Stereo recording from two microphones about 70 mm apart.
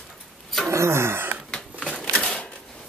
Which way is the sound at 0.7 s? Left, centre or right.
Right.